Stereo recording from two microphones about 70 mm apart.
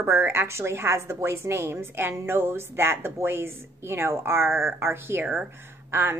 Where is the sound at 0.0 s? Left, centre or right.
Right.